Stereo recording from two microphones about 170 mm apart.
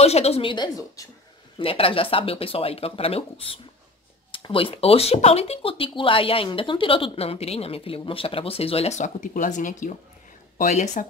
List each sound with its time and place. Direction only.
0.0 s speech: 40° left (ahead or behind)